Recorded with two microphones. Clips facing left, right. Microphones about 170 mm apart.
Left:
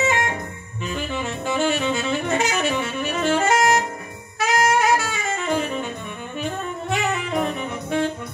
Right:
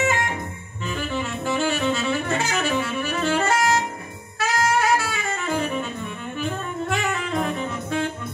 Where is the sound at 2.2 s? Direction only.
20° left (ahead or behind).